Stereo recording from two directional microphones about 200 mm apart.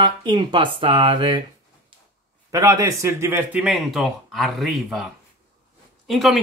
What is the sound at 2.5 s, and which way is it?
Speech, 15° right (ahead or behind).